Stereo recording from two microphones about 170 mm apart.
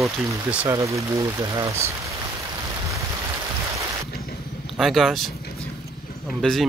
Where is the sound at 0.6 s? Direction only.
20° right (ahead or behind).